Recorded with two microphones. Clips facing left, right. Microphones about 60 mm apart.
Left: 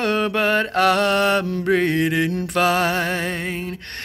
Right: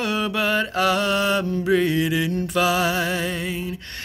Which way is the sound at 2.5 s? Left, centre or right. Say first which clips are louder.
Left 2 dB; left.